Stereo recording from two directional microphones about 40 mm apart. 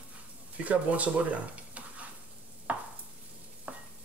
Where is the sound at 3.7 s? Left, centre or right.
Right.